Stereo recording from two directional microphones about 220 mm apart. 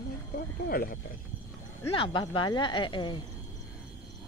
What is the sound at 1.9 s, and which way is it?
Speech, 20° left (ahead or behind).